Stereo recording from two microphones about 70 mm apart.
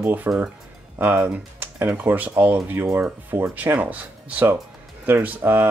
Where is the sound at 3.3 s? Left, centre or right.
Right.